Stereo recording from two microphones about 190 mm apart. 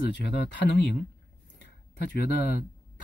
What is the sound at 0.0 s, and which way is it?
Speech, 65° left (ahead or behind).